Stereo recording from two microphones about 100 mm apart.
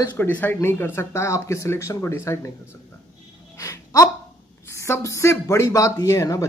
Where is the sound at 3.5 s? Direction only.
30° left (ahead or behind).